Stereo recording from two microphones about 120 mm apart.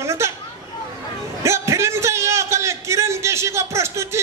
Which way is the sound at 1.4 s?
25° right (ahead or behind).